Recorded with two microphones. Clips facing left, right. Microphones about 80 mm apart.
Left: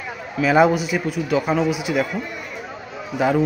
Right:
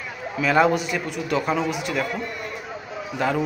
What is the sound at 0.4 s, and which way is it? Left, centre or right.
A man's voice, centre.